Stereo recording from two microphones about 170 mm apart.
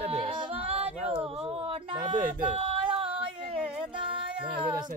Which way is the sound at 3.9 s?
30° right (ahead or behind).